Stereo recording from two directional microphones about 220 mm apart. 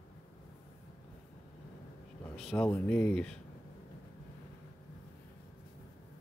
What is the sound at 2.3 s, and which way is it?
Speech, 5° left (ahead or behind).